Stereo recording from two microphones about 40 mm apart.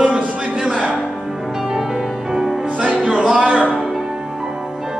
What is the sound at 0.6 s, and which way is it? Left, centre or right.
Music, right.